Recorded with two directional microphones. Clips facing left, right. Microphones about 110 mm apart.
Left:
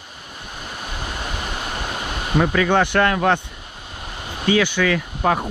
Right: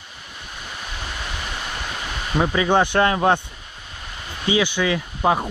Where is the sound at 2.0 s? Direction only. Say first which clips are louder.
Left 2 dB; 10° left (ahead or behind).